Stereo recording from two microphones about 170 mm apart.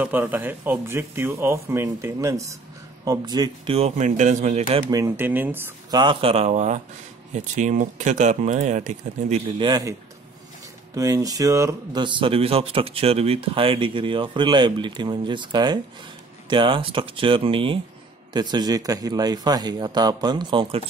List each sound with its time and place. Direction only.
0.0 s speech: 10° right (ahead or behind)
3.7 s speech: 40° right (ahead or behind)
4.9 s speech: 15° right (ahead or behind)
5.9 s speech: 25° right (ahead or behind); by 9.4 s 45° right (ahead or behind)
9.6 s speech: 25° right (ahead or behind)
11.0 s speech: 20° right (ahead or behind)